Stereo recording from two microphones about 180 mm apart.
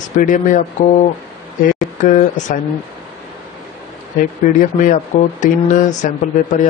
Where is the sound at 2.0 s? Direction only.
45° left (ahead or behind).